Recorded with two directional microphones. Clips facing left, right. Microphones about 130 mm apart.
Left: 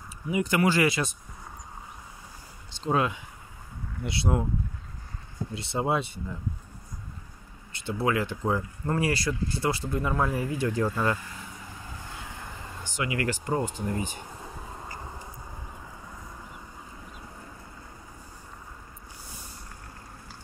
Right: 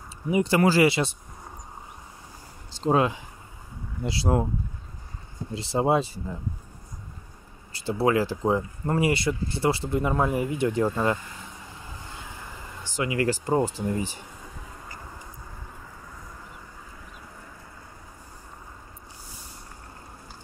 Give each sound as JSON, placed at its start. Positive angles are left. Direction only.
{"t": 0.3, "sound": "speech", "side_deg": -30}
{"t": 2.7, "sound": "speech", "side_deg": -30}
{"t": 5.5, "sound": "speech", "side_deg": -30}
{"t": 7.7, "sound": "speech", "side_deg": -30}
{"t": 12.9, "sound": "speech", "side_deg": -30}